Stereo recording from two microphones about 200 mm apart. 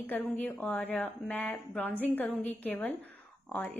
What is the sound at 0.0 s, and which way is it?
A woman's voice, 10° left (ahead or behind).